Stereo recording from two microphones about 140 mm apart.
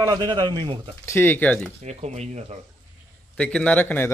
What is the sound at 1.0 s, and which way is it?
Speech, 15° left (ahead or behind).